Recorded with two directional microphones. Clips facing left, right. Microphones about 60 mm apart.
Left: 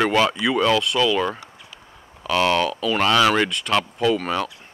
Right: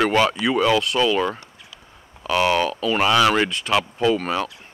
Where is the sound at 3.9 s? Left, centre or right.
Right.